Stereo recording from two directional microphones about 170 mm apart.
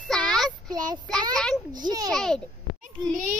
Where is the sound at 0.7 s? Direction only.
25° right (ahead or behind).